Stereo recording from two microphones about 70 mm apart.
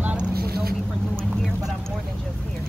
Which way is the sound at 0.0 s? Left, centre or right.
Centre.